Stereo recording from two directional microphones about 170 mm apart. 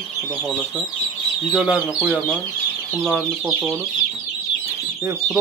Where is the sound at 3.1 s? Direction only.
5° right (ahead or behind).